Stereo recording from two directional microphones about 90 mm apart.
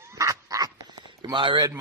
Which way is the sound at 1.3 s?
60° right (ahead or behind).